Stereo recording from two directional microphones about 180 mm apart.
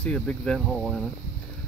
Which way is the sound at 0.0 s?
5° left (ahead or behind).